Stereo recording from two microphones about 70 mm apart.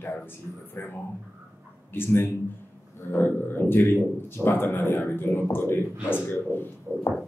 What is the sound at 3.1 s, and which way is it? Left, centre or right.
Speech, left.